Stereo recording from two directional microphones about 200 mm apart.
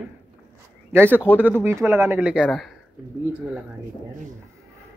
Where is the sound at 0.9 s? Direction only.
10° right (ahead or behind).